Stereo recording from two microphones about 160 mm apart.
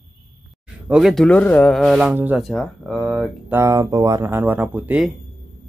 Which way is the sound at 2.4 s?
Centre (ahead or behind).